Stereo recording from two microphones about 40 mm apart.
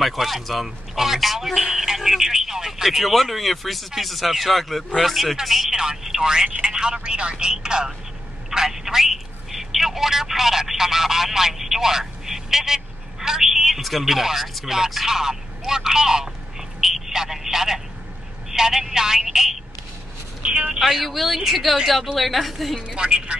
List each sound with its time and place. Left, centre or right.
0.0 s a man's voice: centre
2.9 s a man's voice: centre
20.4 s speech: right
21.0 s speech: centre
22.8 s speech: right